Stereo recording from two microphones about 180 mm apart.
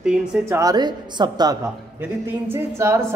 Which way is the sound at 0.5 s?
20° right (ahead or behind).